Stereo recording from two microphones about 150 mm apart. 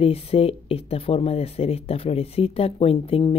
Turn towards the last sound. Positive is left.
turn(degrees=40)  # may be behind; listen again after turning